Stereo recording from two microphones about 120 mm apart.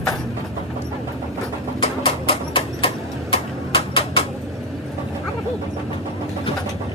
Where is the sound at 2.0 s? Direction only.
50° left (ahead or behind).